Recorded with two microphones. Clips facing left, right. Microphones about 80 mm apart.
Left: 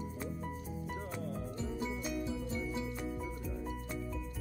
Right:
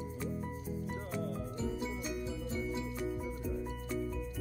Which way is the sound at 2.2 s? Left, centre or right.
Centre.